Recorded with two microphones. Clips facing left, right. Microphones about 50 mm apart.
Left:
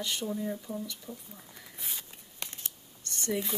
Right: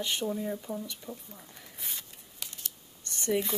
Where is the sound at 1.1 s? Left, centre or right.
Centre.